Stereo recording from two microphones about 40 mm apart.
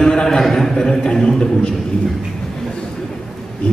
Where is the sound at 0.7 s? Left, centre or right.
Centre.